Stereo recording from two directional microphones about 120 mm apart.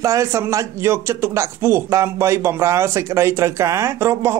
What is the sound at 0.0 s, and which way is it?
Speech, 25° right (ahead or behind).